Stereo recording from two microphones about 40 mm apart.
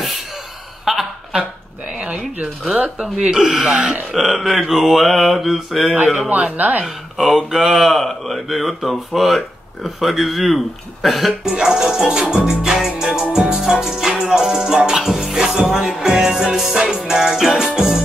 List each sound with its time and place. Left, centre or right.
0.8 s a sound: centre
2.0 s speech: right
2.7 s speech: right
4.1 s speech: centre
6.2 s speech: right
7.2 s music: centre
7.8 s speech: centre
11.4 s music: centre